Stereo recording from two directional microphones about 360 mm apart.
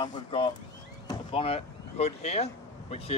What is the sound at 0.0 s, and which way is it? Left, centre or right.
Speech, centre.